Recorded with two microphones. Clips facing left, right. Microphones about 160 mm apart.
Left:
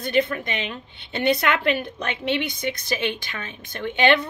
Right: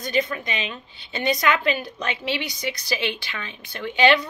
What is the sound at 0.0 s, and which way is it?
A woman's voice, 60° left (ahead or behind).